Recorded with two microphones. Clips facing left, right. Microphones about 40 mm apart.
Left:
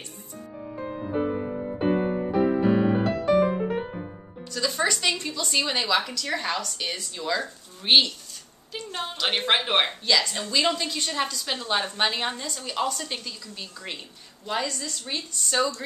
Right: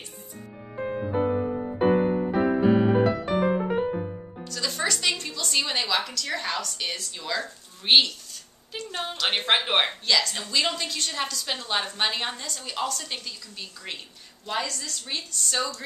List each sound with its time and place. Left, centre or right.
0.7 s music: right
1.0 s music: centre
2.4 s music: centre
4.6 s music: centre
5.1 s a woman's voice: centre
8.7 s a sound: centre
9.1 s a woman's voice: centre